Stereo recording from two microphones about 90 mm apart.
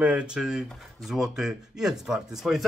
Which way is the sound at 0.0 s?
15° right (ahead or behind).